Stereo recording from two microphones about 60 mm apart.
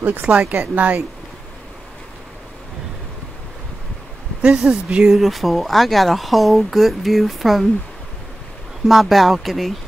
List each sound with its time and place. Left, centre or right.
0.0 s speech: right
4.4 s speech: centre
5.1 s speech: centre
8.8 s speech: centre